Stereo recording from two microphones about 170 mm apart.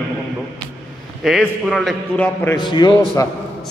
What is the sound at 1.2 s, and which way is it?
A man's voice, centre (ahead or behind).